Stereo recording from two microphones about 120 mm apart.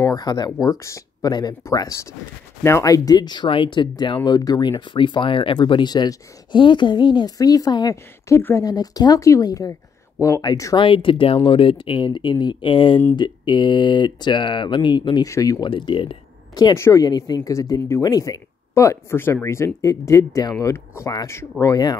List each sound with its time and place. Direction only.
0.0 s speech: 35° left (ahead or behind)
8.6 s speech: 35° left (ahead or behind)
10.9 s speech: 45° left (ahead or behind)
15.2 s speech: 25° left (ahead or behind)
15.7 s speech: 45° left (ahead or behind)
16.7 s speech: 25° left (ahead or behind)